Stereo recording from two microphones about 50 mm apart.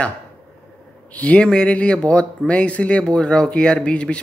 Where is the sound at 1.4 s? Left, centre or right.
Centre.